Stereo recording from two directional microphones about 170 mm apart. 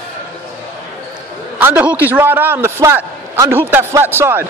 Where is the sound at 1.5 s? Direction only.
10° right (ahead or behind).